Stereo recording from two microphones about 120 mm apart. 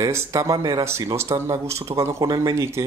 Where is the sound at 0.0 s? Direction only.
25° right (ahead or behind).